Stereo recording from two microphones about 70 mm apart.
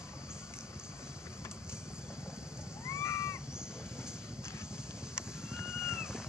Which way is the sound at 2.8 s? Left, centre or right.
Left.